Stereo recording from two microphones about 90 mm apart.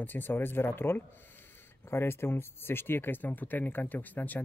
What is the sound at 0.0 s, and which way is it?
Speech, 20° left (ahead or behind).